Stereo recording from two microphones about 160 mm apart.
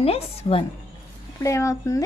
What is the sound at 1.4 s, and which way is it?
Speech, 20° left (ahead or behind).